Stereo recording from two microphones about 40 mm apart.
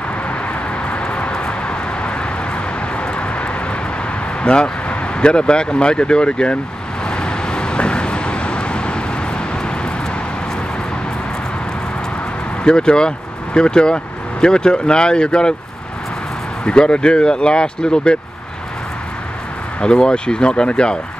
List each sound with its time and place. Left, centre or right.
0.8 s vehicle: left
4.4 s speech: left
7.1 s vehicle: left
12.6 s speech: left
16.6 s speech: left
19.8 s speech: left